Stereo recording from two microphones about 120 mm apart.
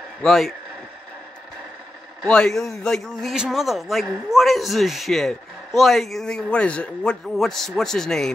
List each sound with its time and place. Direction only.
0.2 s a man's voice: centre (ahead or behind)
2.2 s a man's voice: 5° left (ahead or behind)